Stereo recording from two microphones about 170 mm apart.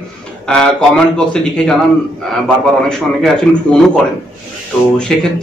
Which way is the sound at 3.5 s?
5° left (ahead or behind).